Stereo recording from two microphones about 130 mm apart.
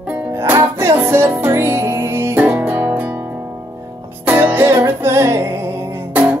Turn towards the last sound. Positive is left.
turn(degrees=-20)  # may be behind; listen again after turning